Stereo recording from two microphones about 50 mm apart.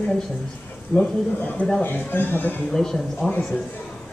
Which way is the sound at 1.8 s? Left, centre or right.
Left.